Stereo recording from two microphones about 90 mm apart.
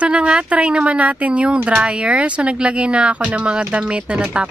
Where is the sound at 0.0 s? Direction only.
10° right (ahead or behind).